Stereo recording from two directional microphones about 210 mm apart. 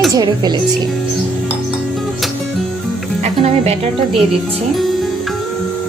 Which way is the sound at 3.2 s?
30° right (ahead or behind).